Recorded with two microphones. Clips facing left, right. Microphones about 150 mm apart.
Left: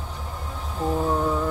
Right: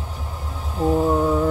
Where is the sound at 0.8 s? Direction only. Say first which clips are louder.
Right 5 dB; 10° right (ahead or behind).